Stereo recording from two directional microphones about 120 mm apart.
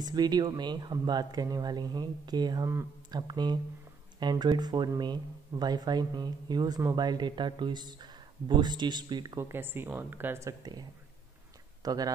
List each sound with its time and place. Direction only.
0.0 s speech: 35° right (ahead or behind)
9.4 s speech: 20° right (ahead or behind)
10.6 s speech: 35° right (ahead or behind)